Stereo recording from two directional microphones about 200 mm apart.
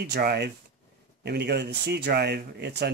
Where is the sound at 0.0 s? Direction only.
55° right (ahead or behind).